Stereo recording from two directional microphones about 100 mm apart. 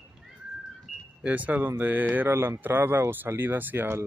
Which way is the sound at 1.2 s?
15° right (ahead or behind).